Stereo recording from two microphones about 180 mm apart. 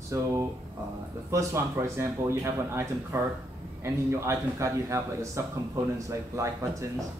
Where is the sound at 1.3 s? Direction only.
15° right (ahead or behind).